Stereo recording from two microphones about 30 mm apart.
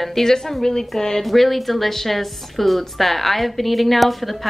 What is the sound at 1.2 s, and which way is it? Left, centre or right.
A woman's voice, centre.